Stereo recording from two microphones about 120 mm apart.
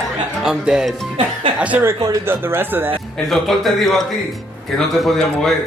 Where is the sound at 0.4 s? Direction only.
5° right (ahead or behind).